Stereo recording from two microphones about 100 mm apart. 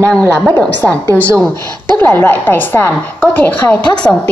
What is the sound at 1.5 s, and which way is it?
Speech, 45° right (ahead or behind).